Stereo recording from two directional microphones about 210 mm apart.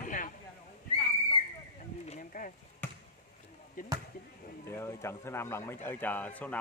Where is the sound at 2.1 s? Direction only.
40° left (ahead or behind).